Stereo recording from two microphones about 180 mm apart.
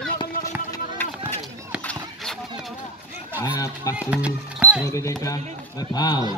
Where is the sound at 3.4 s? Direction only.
20° left (ahead or behind).